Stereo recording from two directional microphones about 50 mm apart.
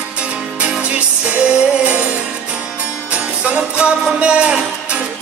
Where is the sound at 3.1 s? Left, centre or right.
Right.